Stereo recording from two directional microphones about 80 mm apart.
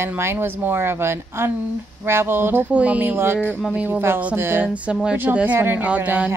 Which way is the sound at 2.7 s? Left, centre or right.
Centre.